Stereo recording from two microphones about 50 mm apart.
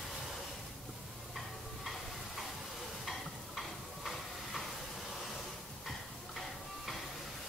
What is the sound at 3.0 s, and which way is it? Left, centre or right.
Stir, centre.